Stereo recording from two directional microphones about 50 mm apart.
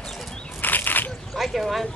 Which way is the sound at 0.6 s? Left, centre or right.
Left.